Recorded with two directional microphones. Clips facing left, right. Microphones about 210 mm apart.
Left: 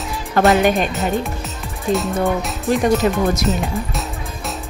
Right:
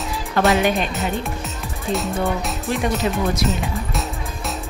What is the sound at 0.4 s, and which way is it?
Speech, 45° left (ahead or behind).